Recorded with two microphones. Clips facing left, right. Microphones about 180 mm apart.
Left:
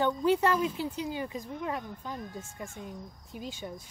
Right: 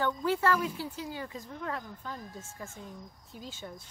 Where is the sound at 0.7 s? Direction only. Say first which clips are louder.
Left 4 dB; 20° left (ahead or behind).